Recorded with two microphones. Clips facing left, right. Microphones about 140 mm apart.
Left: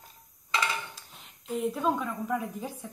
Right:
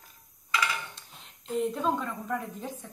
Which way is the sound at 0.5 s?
25° left (ahead or behind).